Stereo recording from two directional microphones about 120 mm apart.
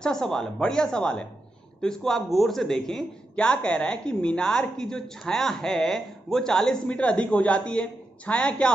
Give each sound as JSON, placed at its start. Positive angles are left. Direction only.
{"t": 0.0, "sound": "speech", "side_deg": 5}